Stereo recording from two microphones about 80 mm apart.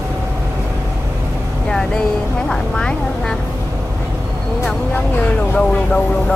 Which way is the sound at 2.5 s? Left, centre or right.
Centre.